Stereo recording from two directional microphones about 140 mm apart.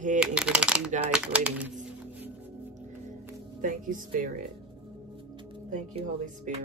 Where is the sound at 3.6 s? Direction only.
65° right (ahead or behind).